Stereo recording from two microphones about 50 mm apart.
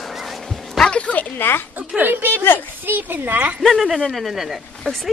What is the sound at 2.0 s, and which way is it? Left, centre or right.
A woman's voice, right.